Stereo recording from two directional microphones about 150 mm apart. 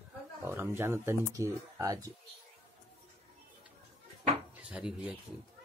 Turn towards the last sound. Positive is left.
turn(degrees=-5)  # may be behind; listen again after turning